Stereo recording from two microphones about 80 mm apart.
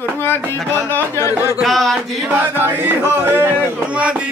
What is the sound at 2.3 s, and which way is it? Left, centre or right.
Music, right.